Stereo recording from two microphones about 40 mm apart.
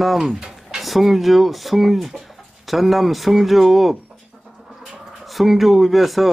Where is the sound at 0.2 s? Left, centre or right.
Centre.